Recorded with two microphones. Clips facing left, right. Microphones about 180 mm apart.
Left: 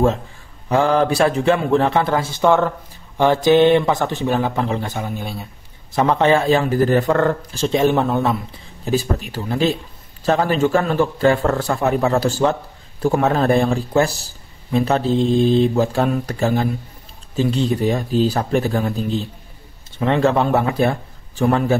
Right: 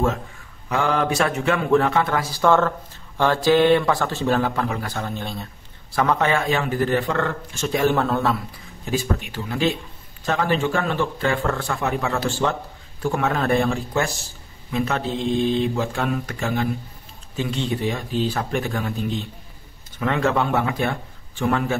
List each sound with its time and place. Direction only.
0.7 s speech: 35° left (ahead or behind)
4.9 s speech: 10° left (ahead or behind)
5.9 s a man's voice: 30° left (ahead or behind)
7.6 s speech: 25° left (ahead or behind)
8.8 s a man's voice: 35° left (ahead or behind)